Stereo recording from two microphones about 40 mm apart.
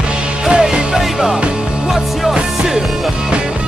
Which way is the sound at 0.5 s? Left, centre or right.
Centre.